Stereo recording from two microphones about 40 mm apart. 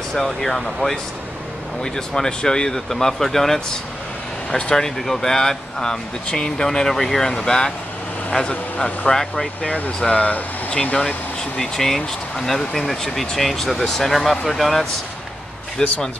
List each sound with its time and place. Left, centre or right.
0.1 s speech: centre
4.5 s a man's voice: left
4.8 s a man's voice: centre; by 9.1 s left
9.1 s speech: centre
9.6 s a man's voice: left
11.5 s speech: centre
15.8 s speech: centre